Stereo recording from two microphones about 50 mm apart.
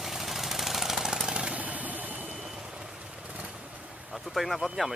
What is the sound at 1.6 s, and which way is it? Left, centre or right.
Vehicle, right.